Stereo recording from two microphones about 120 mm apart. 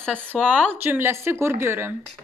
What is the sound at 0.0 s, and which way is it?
Speech, 10° left (ahead or behind).